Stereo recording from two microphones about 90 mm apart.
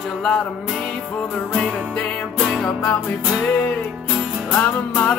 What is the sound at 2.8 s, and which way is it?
Music, 15° left (ahead or behind).